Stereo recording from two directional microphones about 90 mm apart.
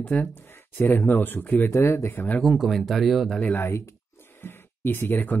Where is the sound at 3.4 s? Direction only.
20° left (ahead or behind).